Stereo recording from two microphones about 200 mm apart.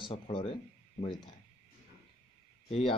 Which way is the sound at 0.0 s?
25° left (ahead or behind).